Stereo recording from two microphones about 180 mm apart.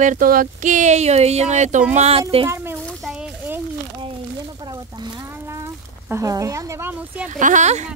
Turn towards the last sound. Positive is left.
turn(degrees=-40)  # may be behind; listen again after turning